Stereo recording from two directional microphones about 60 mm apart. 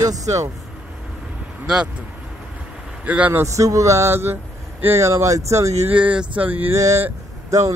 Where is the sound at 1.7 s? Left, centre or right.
Centre.